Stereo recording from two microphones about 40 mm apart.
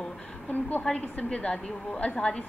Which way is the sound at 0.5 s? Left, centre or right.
Left.